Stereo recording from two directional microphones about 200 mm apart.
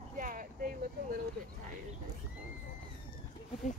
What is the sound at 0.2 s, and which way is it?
Vehicle, 45° right (ahead or behind).